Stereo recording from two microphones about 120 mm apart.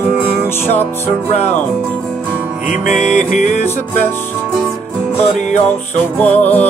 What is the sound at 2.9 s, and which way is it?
Music, 80° left.